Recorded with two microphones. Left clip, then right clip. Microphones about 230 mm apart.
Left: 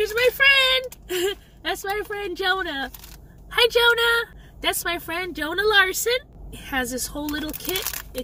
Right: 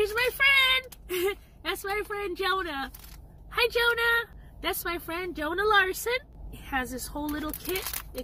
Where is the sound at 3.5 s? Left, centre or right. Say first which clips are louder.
Left 7 dB; centre.